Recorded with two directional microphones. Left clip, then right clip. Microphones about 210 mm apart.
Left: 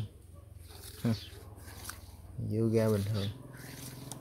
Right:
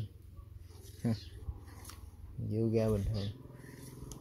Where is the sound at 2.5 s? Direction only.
5° left (ahead or behind).